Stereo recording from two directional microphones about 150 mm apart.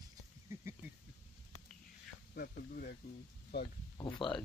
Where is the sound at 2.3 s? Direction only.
75° left (ahead or behind).